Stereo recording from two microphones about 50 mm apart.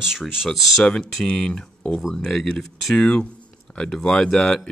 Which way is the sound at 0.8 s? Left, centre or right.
Centre.